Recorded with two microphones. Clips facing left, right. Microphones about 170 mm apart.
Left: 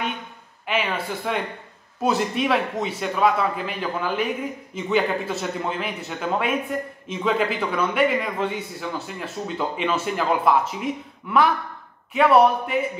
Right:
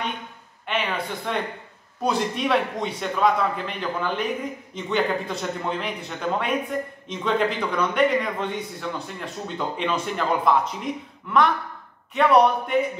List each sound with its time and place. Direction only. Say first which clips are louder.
0.7 s a man's voice: left 2 dB; 5° left (ahead or behind)